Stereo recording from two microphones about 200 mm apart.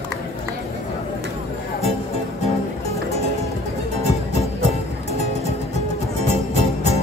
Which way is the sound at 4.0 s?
35° left (ahead or behind).